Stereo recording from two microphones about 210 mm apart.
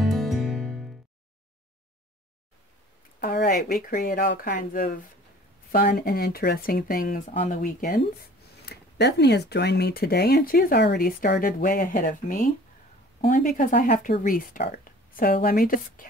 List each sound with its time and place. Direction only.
0.0 s music: centre (ahead or behind)
3.2 s speech: 50° left (ahead or behind)
8.6 s speech: 50° left (ahead or behind)